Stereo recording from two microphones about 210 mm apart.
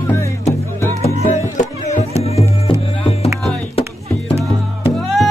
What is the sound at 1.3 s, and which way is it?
Music, 35° left (ahead or behind).